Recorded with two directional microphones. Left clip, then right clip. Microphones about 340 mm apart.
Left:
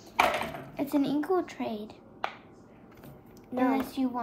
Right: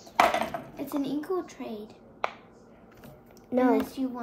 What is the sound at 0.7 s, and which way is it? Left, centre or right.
A woman's voice, left.